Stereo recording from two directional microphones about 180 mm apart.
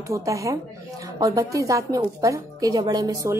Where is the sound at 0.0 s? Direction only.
15° right (ahead or behind).